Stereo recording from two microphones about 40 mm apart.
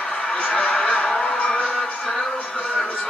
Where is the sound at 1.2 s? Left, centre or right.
Left.